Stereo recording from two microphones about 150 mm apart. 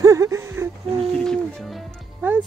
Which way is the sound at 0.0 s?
20° right (ahead or behind).